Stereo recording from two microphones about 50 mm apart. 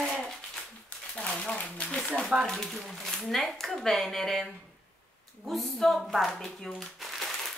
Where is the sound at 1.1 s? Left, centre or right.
Left.